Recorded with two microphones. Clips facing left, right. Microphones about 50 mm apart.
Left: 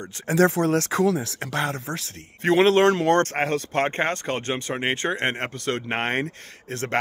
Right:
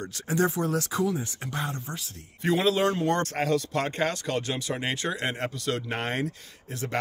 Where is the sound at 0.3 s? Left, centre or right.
Left.